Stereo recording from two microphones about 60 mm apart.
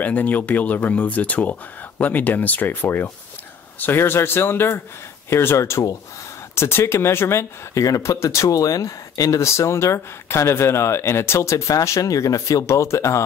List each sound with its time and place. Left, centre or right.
0.0 s speech: left
8.5 s speech: left
9.4 s speech: left